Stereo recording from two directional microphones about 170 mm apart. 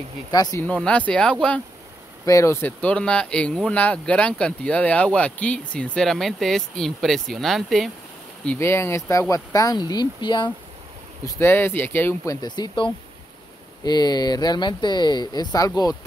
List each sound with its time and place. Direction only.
0.3 s speech: 20° left (ahead or behind)
0.7 s speech: 5° left (ahead or behind)
2.2 s speech: 15° left (ahead or behind); by 7.9 s centre (ahead or behind)
8.5 s speech: 15° left (ahead or behind)
11.2 s speech: 15° left (ahead or behind)